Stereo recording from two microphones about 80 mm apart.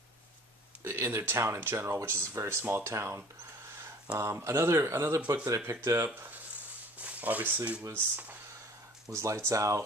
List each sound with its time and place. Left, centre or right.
0.8 s speech: right
7.0 s speech: centre
9.1 s speech: right